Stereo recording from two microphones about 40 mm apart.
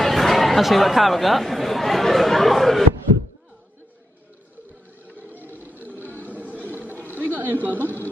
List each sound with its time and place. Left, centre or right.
0.0 s speech: centre
5.3 s chatter: right
5.9 s a sound: right
6.9 s chatter: right